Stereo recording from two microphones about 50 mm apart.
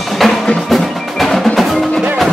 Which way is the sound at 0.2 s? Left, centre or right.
Centre.